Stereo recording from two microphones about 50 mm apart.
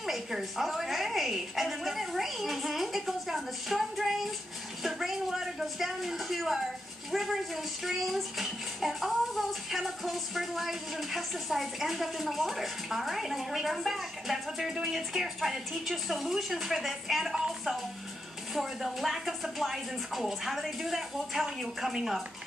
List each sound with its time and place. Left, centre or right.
0.0 s speech: centre